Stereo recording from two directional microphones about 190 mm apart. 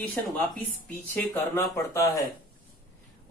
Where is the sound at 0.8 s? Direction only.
10° left (ahead or behind).